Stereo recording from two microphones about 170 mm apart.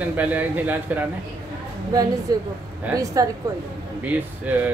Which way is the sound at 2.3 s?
20° right (ahead or behind).